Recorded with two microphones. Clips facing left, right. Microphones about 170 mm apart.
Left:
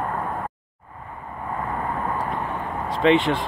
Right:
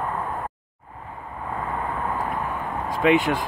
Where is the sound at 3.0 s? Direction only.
5° right (ahead or behind).